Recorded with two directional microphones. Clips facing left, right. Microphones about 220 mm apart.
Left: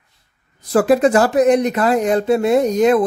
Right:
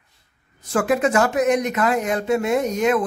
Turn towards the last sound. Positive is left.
turn(degrees=35)  # may be behind; listen again after turning